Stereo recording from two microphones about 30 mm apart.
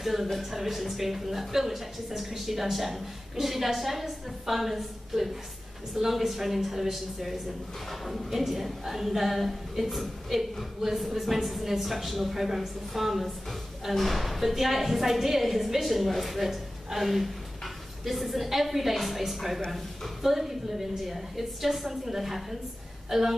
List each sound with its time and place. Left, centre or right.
0.0 s a woman's voice: centre